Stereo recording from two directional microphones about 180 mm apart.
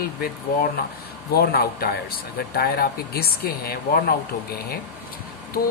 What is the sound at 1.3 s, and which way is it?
Speech, 60° left (ahead or behind).